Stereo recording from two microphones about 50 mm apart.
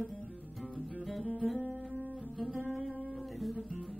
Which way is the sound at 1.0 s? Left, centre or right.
Centre.